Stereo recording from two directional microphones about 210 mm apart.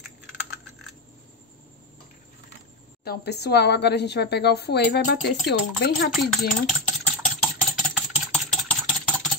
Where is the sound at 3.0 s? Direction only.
50° left (ahead or behind).